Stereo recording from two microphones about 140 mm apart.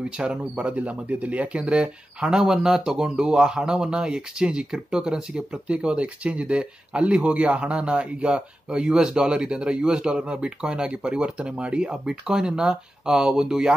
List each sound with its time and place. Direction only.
0.2 s speech: 10° right (ahead or behind)